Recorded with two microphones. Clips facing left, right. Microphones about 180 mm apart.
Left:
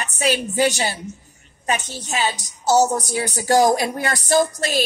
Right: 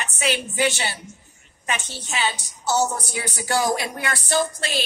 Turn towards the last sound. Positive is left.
turn(degrees=40)  # may be behind; listen again after turning